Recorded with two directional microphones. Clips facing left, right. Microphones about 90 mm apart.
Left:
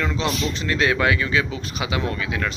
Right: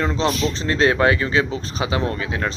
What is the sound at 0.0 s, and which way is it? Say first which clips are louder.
Speech: right 3 dB; 35° right (ahead or behind).